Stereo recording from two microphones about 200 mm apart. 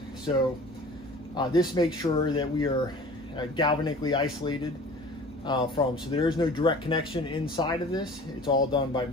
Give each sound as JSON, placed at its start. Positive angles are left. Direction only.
{"t": 1.3, "sound": "speech", "side_deg": 20}